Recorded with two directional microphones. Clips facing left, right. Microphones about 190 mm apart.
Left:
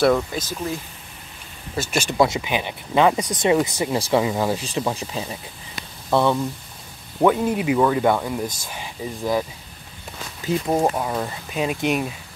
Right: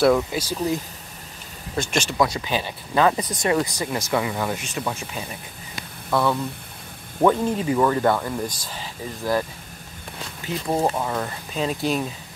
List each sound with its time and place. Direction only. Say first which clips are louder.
0.0 s speech: even; 5° right (ahead or behind)
1.8 s speech: even; 5° left (ahead or behind)
2.1 s speech: left 4 dB; 25° left (ahead or behind)
7.2 s speech: left 1 dB; 10° left (ahead or behind)
10.7 s speech: even; 10° left (ahead or behind)